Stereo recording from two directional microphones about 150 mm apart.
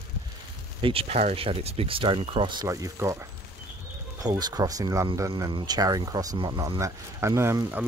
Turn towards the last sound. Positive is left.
turn(degrees=-15)  # may be behind; listen again after turning